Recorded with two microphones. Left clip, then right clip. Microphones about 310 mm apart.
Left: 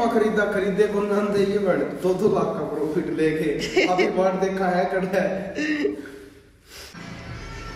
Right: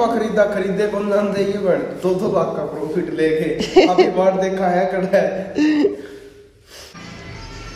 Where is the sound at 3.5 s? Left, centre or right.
Right.